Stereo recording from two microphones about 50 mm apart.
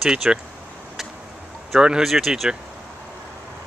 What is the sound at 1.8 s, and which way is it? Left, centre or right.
Speech, centre.